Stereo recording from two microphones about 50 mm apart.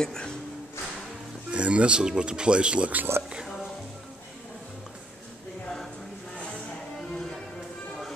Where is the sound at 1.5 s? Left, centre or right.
Right.